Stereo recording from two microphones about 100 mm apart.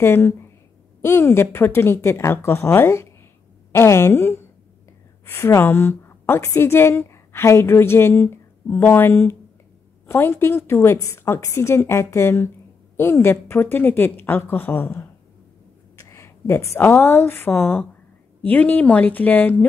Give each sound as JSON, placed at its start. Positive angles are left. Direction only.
{"t": 0.0, "sound": "a woman's voice", "side_deg": 25}